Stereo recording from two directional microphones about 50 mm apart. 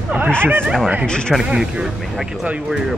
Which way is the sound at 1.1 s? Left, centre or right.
Centre.